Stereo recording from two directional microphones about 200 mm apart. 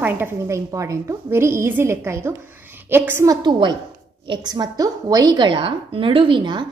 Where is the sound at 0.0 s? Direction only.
10° right (ahead or behind).